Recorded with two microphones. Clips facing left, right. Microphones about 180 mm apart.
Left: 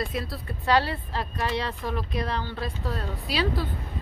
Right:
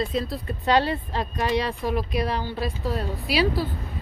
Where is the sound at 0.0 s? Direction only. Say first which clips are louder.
Right 4 dB; 20° right (ahead or behind).